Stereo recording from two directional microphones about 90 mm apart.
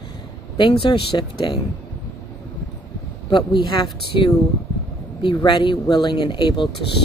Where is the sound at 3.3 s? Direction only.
60° left (ahead or behind).